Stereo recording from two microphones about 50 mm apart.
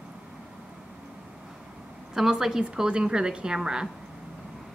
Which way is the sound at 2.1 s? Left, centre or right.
Centre.